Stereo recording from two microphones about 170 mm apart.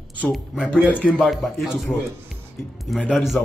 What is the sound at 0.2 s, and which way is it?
Speech, centre (ahead or behind).